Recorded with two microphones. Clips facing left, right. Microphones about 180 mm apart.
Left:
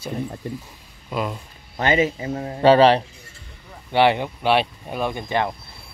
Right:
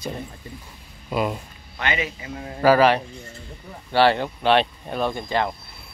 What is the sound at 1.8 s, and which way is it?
A man's voice, 40° left (ahead or behind).